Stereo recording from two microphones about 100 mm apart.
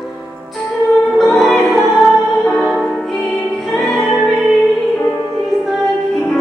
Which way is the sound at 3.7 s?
Centre (ahead or behind).